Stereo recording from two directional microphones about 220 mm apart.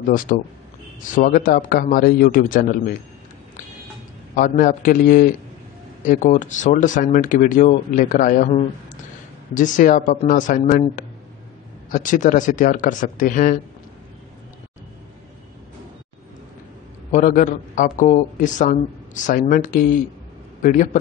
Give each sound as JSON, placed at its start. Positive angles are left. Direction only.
{"t": 0.1, "sound": "a man's voice", "side_deg": 40}
{"t": 4.4, "sound": "a man's voice", "side_deg": 40}
{"t": 11.9, "sound": "a man's voice", "side_deg": 35}
{"t": 17.1, "sound": "a man's voice", "side_deg": 35}